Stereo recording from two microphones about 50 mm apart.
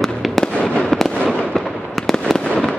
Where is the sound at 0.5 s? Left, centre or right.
Centre.